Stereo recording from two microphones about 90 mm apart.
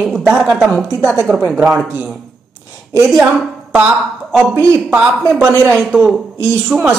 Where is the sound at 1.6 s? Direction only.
Centre (ahead or behind).